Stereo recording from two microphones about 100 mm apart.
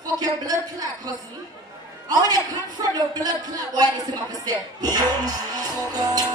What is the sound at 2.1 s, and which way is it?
Speech, 40° right (ahead or behind).